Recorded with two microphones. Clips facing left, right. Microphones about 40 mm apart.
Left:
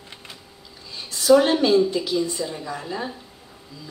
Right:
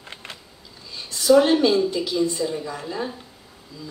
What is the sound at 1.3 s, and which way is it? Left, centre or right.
A woman's voice, centre.